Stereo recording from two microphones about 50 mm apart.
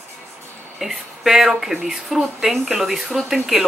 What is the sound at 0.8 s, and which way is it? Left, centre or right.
A woman's voice, centre.